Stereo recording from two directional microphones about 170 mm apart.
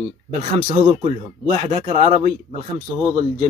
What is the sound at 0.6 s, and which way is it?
Speech, 30° right (ahead or behind).